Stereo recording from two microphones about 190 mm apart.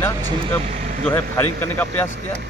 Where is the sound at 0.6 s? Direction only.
40° right (ahead or behind).